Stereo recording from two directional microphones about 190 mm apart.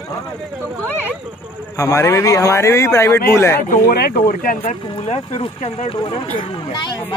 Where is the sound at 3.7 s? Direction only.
50° left (ahead or behind).